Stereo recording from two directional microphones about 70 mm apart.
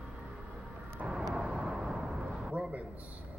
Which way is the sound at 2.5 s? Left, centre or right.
Centre.